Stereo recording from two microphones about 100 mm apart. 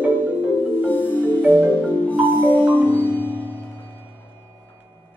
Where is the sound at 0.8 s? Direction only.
15° left (ahead or behind).